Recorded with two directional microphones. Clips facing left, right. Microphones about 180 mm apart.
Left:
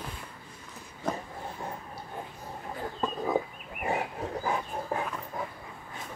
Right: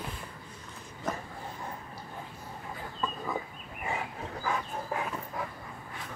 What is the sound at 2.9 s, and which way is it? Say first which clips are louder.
Chicken: left 6 dB; 50° left (ahead or behind).